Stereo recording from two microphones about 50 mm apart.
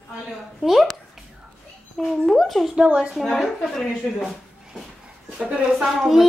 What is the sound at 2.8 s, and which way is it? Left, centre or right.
Speech, centre.